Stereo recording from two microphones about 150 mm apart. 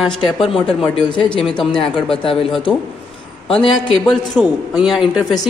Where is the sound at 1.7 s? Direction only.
35° left (ahead or behind).